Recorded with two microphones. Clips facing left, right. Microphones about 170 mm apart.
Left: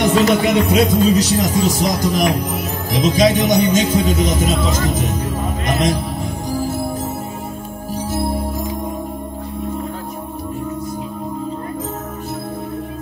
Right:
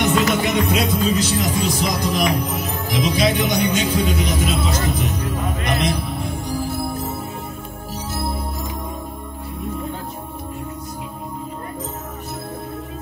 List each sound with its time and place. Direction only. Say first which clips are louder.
0.1 s speech: left 4 dB; 30° left (ahead or behind)